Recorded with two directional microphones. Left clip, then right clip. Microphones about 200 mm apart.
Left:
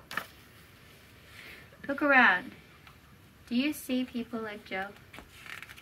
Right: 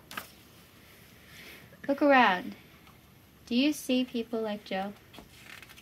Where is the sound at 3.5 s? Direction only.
40° right (ahead or behind).